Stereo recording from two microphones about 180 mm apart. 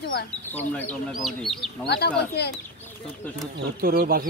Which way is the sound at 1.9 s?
65° left (ahead or behind).